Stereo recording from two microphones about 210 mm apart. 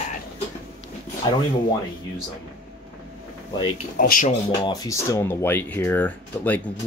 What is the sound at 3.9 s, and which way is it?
Speech, 40° left (ahead or behind).